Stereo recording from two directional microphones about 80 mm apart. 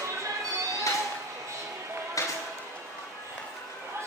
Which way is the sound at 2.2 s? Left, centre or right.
Left.